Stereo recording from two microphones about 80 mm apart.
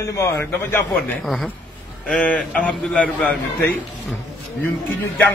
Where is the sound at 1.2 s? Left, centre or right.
Centre.